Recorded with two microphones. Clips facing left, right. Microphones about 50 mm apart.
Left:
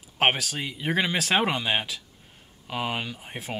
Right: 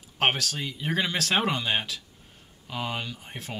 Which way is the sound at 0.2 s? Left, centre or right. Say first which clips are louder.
Left 2 dB; centre.